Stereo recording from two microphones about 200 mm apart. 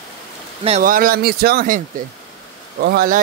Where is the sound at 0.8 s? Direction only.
45° right (ahead or behind).